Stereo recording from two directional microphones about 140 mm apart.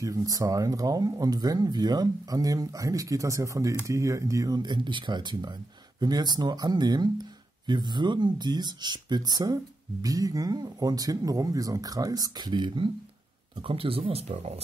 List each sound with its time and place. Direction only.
0.0 s speech: 25° right (ahead or behind); by 14.6 s 50° right (ahead or behind)